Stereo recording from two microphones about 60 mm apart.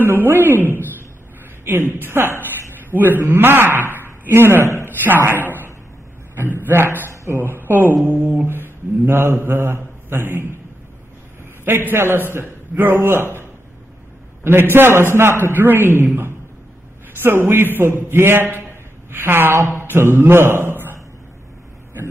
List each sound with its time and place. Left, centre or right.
0.0 s a man's voice: right
11.6 s a man's voice: right
18.6 s a sound: right
19.8 s a man's voice: right